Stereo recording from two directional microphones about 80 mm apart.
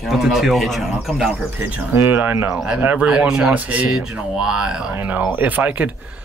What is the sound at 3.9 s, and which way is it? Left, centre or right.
Speech, centre.